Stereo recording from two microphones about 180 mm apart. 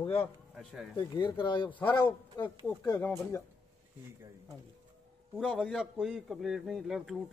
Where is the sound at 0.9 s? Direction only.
25° left (ahead or behind).